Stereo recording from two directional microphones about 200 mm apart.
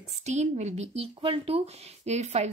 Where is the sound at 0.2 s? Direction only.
35° right (ahead or behind).